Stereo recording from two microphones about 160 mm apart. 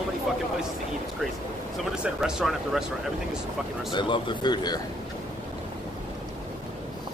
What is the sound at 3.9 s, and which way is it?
Speech, 30° left (ahead or behind).